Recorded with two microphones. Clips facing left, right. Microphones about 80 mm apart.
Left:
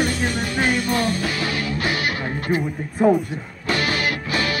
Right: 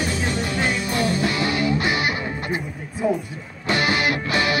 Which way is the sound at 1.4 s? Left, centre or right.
Left.